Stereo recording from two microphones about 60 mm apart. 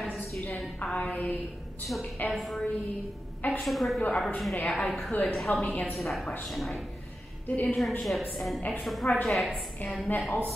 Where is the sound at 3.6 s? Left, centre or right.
Centre.